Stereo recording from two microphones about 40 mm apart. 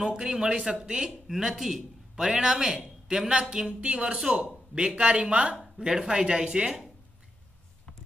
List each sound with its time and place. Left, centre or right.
0.0 s speech: centre
0.9 s a man's voice: centre
4.7 s speech: right
5.8 s speech: centre